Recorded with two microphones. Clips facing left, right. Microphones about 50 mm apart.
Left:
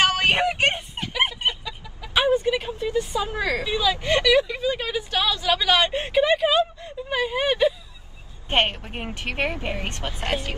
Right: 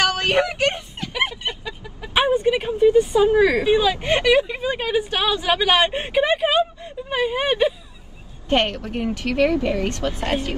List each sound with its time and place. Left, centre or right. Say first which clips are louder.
0.0 s a sound: right 1 dB; left
1.5 s chicken: right 3 dB; right
2.1 s speech: right 2 dB; right
8.5 s speech: right 3 dB; left